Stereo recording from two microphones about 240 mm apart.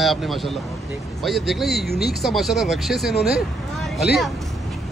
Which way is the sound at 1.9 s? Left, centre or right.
Left.